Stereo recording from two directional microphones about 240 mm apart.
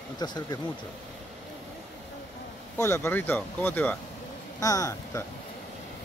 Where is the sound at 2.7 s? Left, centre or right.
Centre.